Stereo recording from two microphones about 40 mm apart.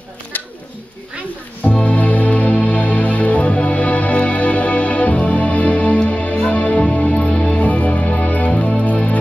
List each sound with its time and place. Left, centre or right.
1.6 s music: left